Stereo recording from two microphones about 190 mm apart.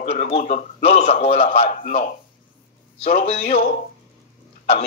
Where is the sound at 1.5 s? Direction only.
50° left (ahead or behind).